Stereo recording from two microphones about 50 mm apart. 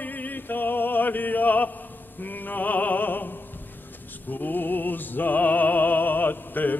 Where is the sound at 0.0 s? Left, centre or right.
Left.